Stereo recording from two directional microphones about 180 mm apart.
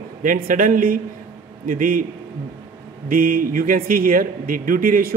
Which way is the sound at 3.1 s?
50° right (ahead or behind).